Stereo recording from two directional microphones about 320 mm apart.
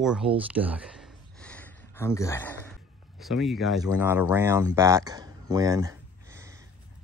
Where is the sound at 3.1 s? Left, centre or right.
Centre.